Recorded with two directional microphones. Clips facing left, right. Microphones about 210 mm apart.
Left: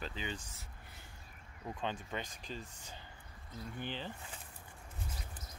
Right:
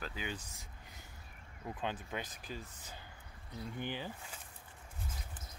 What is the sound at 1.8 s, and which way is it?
Speech, 10° right (ahead or behind).